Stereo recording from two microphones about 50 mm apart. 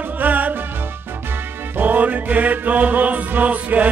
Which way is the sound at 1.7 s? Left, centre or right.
Right.